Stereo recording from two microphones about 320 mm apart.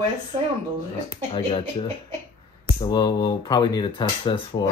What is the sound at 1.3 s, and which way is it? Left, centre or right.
Speech, centre.